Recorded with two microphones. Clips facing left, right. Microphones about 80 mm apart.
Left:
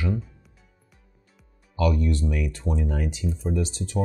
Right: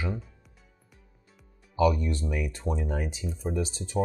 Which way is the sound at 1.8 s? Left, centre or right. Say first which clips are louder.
Even; centre.